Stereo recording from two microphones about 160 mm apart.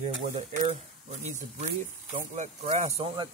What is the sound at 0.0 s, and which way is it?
Speech, 50° right (ahead or behind).